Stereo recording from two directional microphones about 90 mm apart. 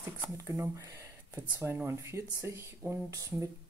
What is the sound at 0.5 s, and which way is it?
Speech, 35° right (ahead or behind).